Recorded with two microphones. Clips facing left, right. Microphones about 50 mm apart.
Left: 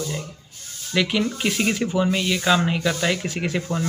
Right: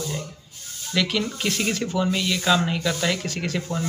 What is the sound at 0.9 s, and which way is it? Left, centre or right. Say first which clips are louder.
Speech: left 2 dB; centre.